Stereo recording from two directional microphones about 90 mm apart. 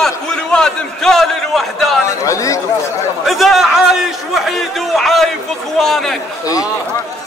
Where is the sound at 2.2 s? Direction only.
35° left (ahead or behind).